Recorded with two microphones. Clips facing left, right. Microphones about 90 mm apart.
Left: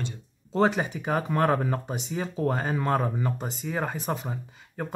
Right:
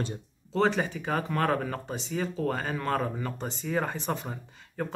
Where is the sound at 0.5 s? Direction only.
15° left (ahead or behind).